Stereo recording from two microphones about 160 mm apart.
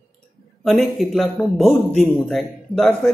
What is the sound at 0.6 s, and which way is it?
A man's voice, centre (ahead or behind).